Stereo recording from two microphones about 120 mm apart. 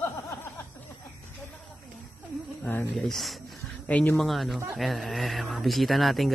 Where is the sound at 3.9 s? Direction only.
10° left (ahead or behind).